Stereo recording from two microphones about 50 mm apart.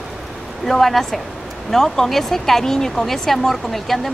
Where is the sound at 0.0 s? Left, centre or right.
Centre.